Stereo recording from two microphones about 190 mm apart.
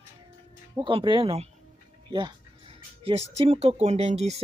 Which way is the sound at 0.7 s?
25° right (ahead or behind).